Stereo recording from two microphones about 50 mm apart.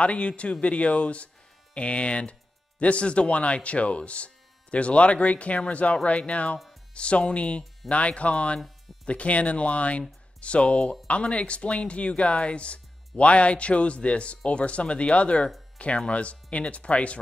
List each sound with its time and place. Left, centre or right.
0.0 s speech: left